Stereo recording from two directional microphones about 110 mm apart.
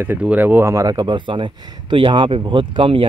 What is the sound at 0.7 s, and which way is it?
Speech, 35° right (ahead or behind).